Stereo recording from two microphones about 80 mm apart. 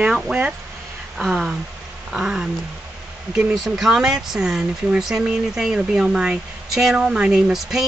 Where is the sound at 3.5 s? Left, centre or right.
Centre.